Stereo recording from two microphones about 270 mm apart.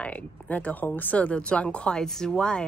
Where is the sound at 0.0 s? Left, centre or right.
Centre.